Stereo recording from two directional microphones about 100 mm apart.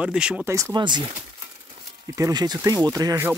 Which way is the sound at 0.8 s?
50° right (ahead or behind).